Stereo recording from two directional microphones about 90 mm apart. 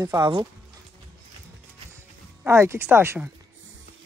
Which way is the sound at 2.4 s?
30° right (ahead or behind).